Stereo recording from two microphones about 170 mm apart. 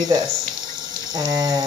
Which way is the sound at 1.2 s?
20° right (ahead or behind).